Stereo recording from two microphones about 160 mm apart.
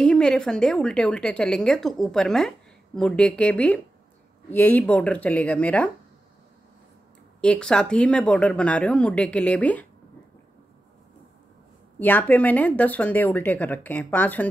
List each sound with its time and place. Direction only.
0.0 s a woman's voice: 5° left (ahead or behind)
7.4 s speech: 5° left (ahead or behind)
12.0 s speech: 10° left (ahead or behind)